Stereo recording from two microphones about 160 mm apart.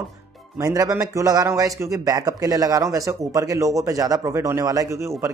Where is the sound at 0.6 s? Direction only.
20° right (ahead or behind).